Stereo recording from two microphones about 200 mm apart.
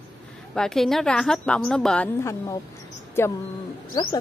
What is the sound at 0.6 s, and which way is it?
A woman's voice, centre (ahead or behind).